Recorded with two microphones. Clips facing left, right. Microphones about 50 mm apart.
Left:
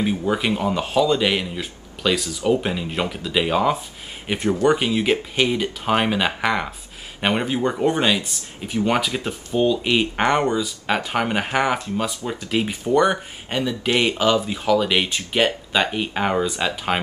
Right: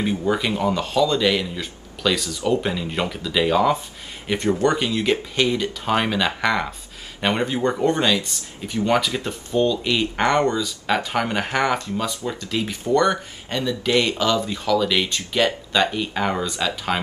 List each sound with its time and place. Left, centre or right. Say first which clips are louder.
0.0 s speech: even; centre
1.6 s speech: right 1 dB; centre
9.8 s speech: left 1 dB; left